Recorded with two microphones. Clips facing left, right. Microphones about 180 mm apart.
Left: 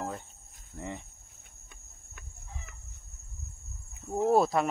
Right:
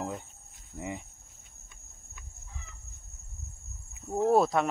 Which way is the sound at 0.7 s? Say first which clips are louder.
Right 2 dB; 10° right (ahead or behind).